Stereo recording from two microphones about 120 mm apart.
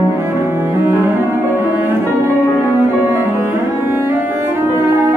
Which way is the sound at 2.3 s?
20° left (ahead or behind).